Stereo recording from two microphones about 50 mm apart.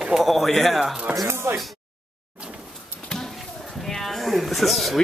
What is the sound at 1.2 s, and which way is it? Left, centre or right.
Speech, right.